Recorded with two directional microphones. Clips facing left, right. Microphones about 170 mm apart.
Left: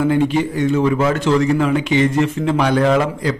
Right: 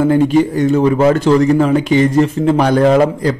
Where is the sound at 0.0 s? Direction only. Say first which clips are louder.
Right 5 dB; 40° right (ahead or behind).